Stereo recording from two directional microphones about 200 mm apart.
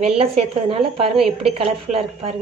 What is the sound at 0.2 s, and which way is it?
A woman's voice, 30° right (ahead or behind).